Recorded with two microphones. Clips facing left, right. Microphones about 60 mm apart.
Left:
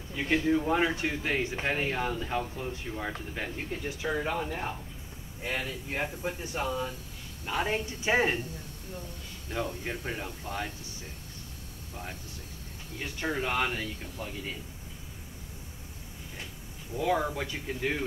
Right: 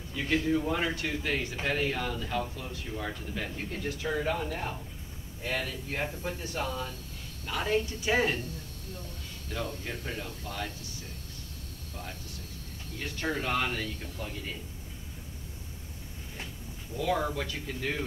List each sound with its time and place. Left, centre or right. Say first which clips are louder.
0.2 s speech: left 1 dB; centre
0.5 s speech: left 3 dB; centre
3.5 s speech: even; centre
9.5 s speech: left 2 dB; left
13.0 s speech: left 1 dB; centre
16.9 s speech: left 1 dB; left